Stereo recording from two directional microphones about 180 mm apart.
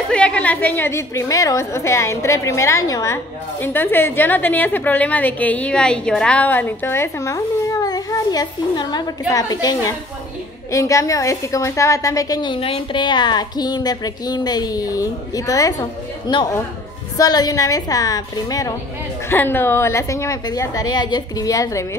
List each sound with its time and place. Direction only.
0.1 s a woman's voice: 5° left (ahead or behind)